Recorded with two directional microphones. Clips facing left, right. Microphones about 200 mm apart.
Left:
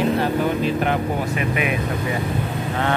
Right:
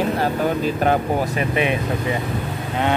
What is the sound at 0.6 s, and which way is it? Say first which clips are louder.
Speech: right 2 dB; 40° right (ahead or behind).